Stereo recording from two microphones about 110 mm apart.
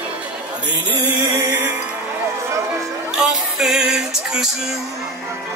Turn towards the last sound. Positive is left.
turn(degrees=-5)  # may be behind; listen again after turning